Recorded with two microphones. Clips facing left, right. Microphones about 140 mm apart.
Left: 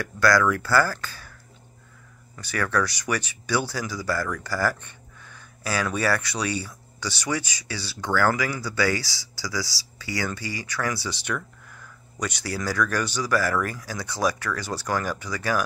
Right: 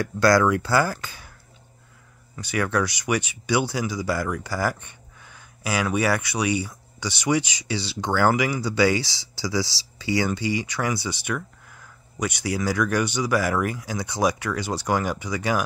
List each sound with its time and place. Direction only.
0.0 s speech: 25° right (ahead or behind)
2.3 s speech: 15° right (ahead or behind)